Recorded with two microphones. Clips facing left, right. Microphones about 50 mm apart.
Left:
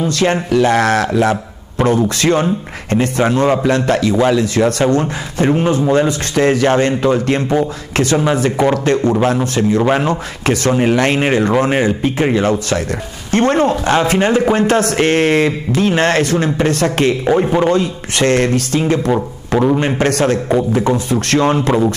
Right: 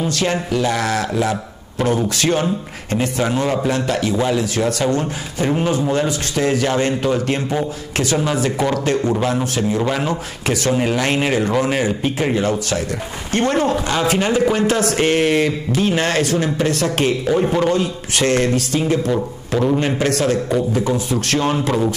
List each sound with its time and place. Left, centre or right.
0.2 s speech: left
1.3 s a sound: left
2.9 s speech: left
8.4 s speech: left
10.7 s speech: left
17.3 s speech: left
17.6 s speech: left
20.0 s speech: left
20.4 s speech: left
20.8 s speech: left